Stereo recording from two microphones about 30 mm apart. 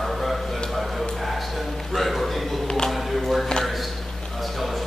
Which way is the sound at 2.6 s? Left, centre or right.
Left.